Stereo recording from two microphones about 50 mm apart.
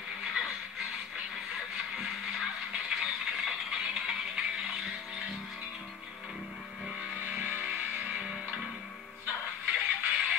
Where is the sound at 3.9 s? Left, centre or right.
Centre.